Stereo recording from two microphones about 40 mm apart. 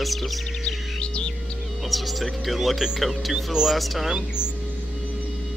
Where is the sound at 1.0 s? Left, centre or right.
Left.